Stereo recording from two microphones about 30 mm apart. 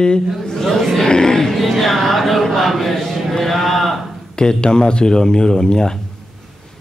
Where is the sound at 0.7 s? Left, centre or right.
Centre.